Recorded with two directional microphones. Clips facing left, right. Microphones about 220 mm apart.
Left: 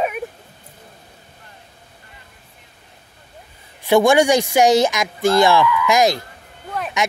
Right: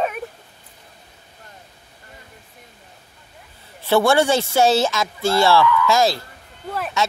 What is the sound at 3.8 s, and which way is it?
Speech, 15° left (ahead or behind).